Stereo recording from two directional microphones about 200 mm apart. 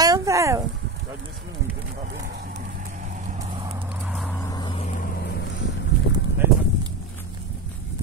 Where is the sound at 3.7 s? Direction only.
5° right (ahead or behind).